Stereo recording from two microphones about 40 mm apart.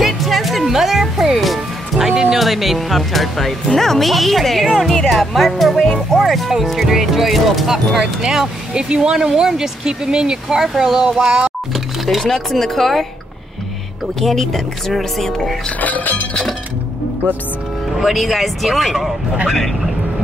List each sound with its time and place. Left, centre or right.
0.0 s music: centre
2.4 s speech: centre
8.7 s speech: right
11.4 s music: centre
12.3 s speech: centre
14.2 s speech: centre
15.8 s speech: left
17.9 s speech: centre